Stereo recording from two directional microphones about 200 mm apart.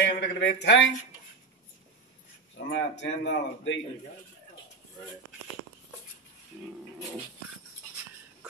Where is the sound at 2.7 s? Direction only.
65° left (ahead or behind).